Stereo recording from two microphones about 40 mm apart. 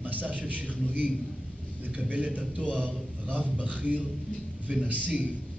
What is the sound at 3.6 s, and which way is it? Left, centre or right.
Speech, right.